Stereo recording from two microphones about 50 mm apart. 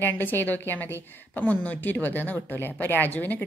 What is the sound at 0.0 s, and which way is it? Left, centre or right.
A woman's voice, left.